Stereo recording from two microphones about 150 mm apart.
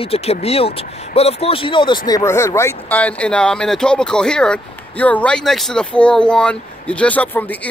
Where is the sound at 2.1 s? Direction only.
20° left (ahead or behind).